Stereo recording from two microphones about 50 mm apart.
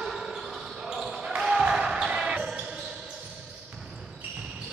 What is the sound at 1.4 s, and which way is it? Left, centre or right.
Basketball bounce, centre.